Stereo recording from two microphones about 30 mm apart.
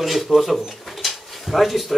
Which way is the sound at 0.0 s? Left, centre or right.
Centre.